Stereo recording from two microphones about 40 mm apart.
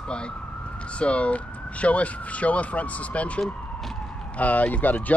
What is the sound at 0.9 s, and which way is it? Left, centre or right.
Speech, left.